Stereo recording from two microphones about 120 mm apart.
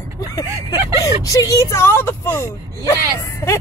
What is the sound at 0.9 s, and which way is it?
Speech, 30° left (ahead or behind).